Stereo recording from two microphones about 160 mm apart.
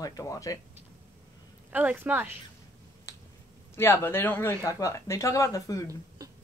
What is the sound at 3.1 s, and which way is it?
Finger snapping, 20° left (ahead or behind).